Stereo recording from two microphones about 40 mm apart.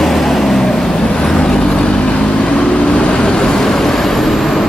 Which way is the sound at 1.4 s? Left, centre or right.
Centre.